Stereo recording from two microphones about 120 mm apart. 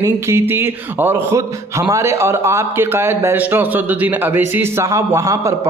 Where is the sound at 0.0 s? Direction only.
20° right (ahead or behind).